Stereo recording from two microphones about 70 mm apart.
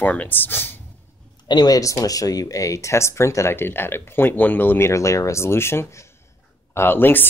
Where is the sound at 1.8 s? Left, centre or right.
Left.